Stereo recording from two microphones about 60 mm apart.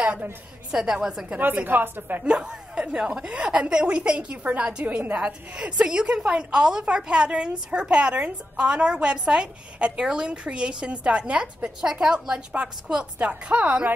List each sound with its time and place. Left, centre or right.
0.0 s a woman's voice: right
0.7 s a woman's voice: centre
1.4 s a woman's voice: right
2.2 s a woman's voice: centre